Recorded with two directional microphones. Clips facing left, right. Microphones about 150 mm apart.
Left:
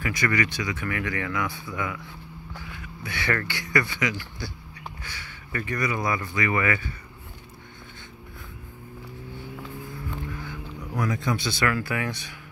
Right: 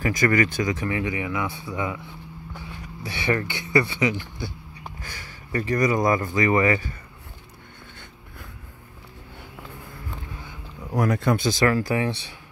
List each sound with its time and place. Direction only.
0.0 s speech: 45° right (ahead or behind)
0.8 s speech: 25° right (ahead or behind)
2.5 s vehicle: 25° right (ahead or behind)
3.0 s speech: 25° right (ahead or behind)
5.0 s speech: 45° right (ahead or behind)
11.1 s speech: 60° right (ahead or behind)
11.4 s speech: 35° right (ahead or behind)